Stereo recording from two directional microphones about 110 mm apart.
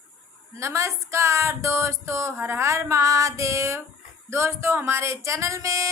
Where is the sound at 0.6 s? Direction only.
25° right (ahead or behind).